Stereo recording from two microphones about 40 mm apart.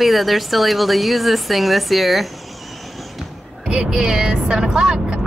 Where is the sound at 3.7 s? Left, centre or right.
Centre.